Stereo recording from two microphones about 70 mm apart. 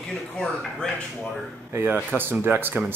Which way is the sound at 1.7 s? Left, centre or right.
Right.